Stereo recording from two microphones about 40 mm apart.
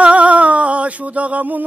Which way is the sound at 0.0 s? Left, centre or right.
Right.